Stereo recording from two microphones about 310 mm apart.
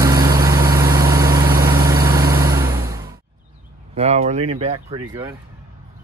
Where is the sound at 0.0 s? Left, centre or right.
Centre.